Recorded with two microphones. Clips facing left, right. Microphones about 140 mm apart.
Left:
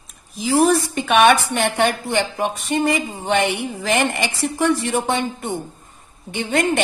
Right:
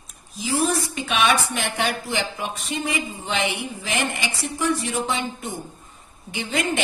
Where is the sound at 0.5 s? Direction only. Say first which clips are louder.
Left 7 dB; 65° left (ahead or behind).